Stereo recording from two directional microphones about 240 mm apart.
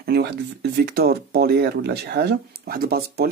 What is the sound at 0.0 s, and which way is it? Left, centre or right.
Speech, right.